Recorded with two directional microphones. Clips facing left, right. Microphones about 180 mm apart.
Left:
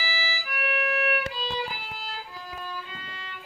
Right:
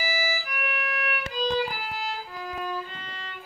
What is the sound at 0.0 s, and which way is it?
Violin, 45° right (ahead or behind).